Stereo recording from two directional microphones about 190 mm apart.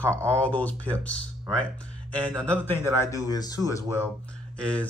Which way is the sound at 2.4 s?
10° left (ahead or behind).